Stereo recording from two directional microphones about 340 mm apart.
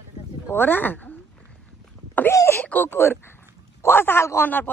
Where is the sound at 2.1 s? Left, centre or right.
Centre.